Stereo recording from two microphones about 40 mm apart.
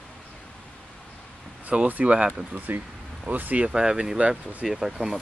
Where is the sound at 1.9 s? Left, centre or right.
Right.